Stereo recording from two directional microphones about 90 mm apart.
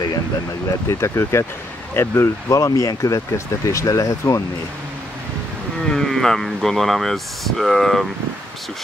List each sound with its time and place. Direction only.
0.8 s speech: 30° left (ahead or behind)
5.9 s speech: 5° left (ahead or behind)